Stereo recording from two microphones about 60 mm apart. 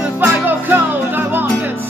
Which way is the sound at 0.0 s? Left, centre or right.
Right.